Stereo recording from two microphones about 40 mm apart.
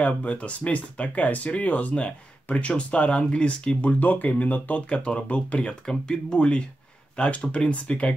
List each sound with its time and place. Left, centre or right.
0.0 s speech: left
4.8 s speech: left
5.9 s speech: centre
7.2 s speech: left